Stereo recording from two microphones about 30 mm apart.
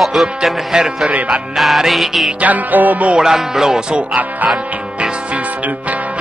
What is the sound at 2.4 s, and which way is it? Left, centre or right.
Music, right.